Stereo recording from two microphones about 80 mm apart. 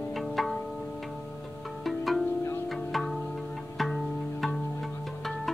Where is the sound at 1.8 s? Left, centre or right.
Centre.